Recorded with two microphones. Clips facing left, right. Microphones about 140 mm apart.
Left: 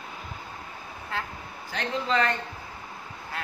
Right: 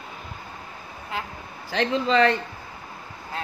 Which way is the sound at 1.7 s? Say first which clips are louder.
Right 5 dB; 90° right.